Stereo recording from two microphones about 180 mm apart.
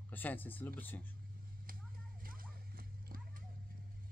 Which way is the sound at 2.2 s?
55° right (ahead or behind).